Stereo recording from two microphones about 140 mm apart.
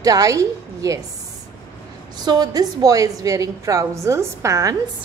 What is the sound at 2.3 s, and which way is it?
A woman's voice, 25° right (ahead or behind).